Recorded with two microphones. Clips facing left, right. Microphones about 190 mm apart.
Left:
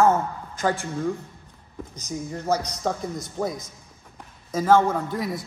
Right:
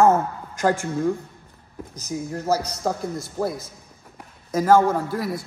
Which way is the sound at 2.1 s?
5° right (ahead or behind).